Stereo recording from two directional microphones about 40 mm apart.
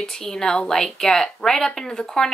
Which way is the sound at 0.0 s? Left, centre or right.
Centre.